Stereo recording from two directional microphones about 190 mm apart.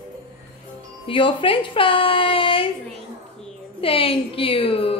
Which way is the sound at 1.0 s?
25° left (ahead or behind).